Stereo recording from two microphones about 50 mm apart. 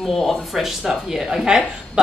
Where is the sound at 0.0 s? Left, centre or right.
Centre.